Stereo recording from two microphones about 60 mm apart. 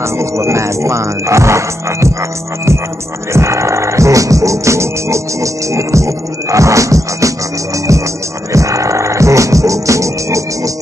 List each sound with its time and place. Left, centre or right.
0.2 s music: right
3.3 s music: right
8.5 s music: right